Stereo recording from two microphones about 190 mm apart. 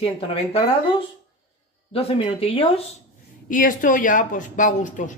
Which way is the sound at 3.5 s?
45° left (ahead or behind).